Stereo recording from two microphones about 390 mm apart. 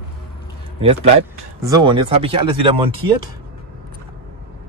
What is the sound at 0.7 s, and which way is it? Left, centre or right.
Speech, centre.